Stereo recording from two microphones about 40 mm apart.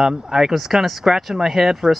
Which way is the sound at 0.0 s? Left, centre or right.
Centre.